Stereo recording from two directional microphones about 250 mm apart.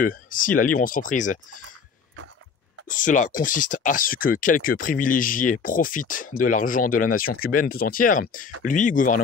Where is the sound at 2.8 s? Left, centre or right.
Left.